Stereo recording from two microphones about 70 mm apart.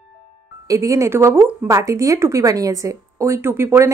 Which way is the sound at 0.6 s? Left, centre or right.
Right.